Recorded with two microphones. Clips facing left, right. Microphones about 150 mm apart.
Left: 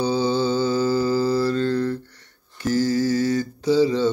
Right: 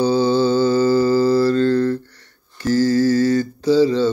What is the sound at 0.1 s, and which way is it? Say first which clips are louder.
Mantra: right 5 dB; 40° right (ahead or behind).